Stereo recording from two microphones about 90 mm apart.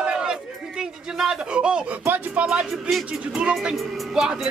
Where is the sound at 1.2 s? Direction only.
10° right (ahead or behind).